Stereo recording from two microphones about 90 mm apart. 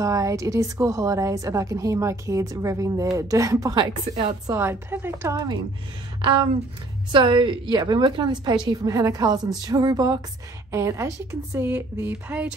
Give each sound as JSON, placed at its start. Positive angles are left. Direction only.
{"t": 0.0, "sound": "a woman's voice", "side_deg": -40}
{"t": 3.7, "sound": "a woman's voice", "side_deg": -60}
{"t": 4.6, "sound": "a woman's voice", "side_deg": -25}
{"t": 5.3, "sound": "a woman's voice", "side_deg": -45}
{"t": 6.2, "sound": "a woman's voice", "side_deg": -60}
{"t": 8.8, "sound": "a woman's voice", "side_deg": -40}
{"t": 10.7, "sound": "a woman's voice", "side_deg": -30}